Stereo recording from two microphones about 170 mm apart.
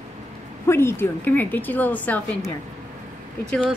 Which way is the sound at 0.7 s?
15° left (ahead or behind).